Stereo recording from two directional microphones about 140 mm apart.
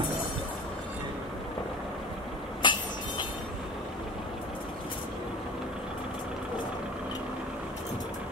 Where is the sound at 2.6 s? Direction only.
35° left (ahead or behind).